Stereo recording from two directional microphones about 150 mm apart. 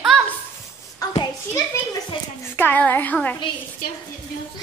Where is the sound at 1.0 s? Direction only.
25° left (ahead or behind).